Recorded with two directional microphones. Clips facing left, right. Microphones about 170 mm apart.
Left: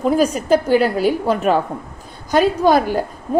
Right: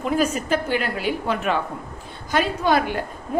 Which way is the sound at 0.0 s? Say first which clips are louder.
Left 5 dB; 40° left (ahead or behind).